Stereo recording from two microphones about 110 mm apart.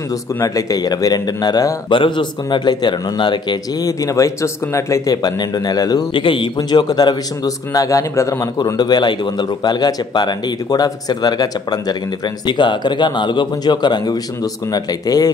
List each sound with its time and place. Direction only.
0.4 s a man's voice: 30° left (ahead or behind)
1.9 s a man's voice: 45° left (ahead or behind)